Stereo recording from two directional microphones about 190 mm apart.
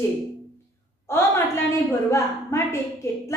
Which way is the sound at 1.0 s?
10° left (ahead or behind).